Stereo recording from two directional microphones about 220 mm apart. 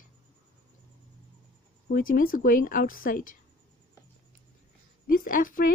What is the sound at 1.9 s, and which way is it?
Speech, 40° left (ahead or behind).